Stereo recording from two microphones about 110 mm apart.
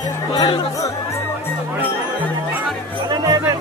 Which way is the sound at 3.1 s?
35° right (ahead or behind).